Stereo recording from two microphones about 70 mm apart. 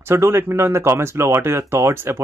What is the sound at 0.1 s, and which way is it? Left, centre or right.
Speech, right.